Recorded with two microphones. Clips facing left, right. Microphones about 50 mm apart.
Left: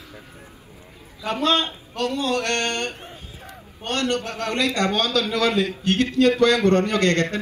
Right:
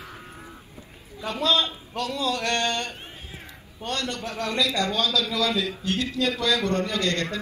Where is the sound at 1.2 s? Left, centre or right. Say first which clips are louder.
Left 2 dB; left.